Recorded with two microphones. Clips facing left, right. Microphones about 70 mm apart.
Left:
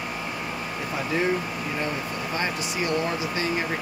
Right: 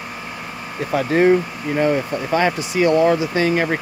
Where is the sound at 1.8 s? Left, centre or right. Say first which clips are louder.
Right 14 dB; right.